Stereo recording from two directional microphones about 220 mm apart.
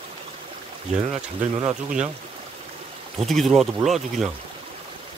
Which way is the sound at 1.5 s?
20° right (ahead or behind).